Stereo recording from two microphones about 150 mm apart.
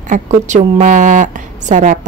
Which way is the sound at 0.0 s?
55° right (ahead or behind).